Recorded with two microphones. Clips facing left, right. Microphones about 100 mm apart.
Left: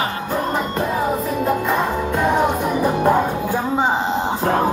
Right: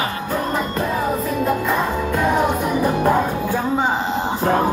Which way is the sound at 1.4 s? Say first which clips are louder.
Left 1 dB; 20° left (ahead or behind).